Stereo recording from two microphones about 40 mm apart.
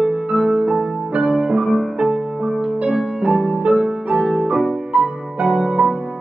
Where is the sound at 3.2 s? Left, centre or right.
Right.